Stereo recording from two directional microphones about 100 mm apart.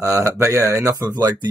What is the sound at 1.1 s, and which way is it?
Speech, 45° right (ahead or behind).